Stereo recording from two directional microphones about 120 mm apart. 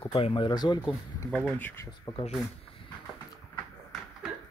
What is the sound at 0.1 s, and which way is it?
Speech, 45° left (ahead or behind).